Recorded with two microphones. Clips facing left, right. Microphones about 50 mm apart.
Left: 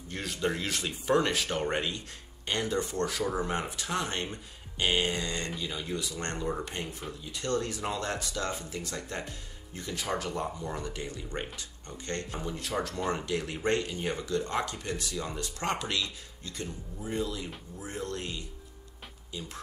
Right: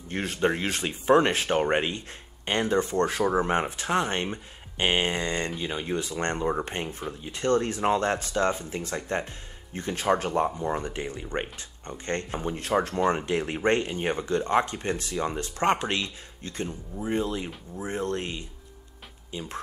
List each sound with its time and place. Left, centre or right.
0.1 s speech: right